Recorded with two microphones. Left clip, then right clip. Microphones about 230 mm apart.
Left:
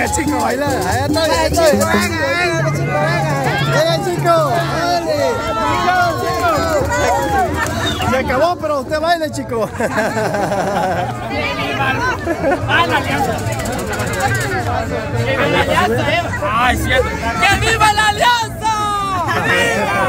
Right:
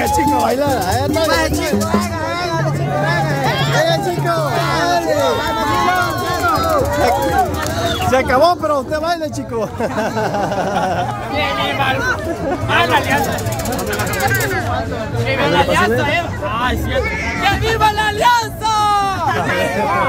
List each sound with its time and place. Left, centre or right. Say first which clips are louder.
0.2 s speech: right 2 dB; centre
8.1 s speech: right 3 dB; centre
12.7 s speech: right 4 dB; right
15.4 s speech: right 1 dB; centre
16.5 s speech: left 5 dB; left
18.7 s a sound: right 3 dB; centre